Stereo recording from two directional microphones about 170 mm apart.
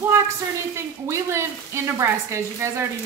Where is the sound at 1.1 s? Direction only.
15° right (ahead or behind).